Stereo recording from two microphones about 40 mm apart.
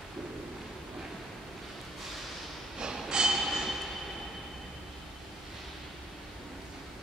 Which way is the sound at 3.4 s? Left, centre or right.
Centre.